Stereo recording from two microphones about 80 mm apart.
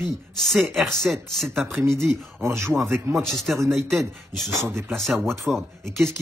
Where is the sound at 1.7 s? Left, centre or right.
Right.